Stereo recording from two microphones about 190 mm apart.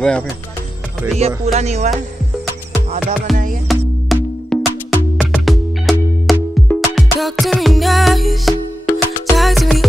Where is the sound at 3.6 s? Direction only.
Centre (ahead or behind).